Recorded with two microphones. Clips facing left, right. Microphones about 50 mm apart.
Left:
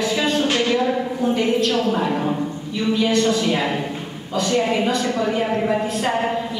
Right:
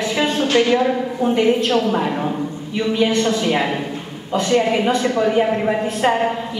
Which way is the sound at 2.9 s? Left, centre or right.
Right.